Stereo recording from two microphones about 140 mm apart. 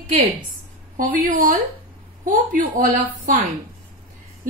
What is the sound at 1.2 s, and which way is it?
Speech, 80° right.